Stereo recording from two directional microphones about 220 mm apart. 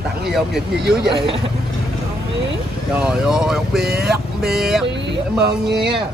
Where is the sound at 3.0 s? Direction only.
5° right (ahead or behind).